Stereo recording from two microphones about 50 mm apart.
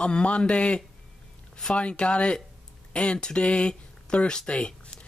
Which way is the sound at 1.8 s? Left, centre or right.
Left.